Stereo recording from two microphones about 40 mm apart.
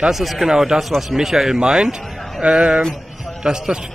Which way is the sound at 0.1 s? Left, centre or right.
Centre.